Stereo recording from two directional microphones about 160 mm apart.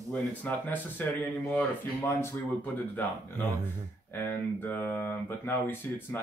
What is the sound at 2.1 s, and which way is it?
Speech, 10° left (ahead or behind).